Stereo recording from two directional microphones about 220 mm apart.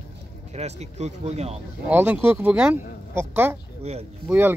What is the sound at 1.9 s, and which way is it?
Speech, 5° right (ahead or behind).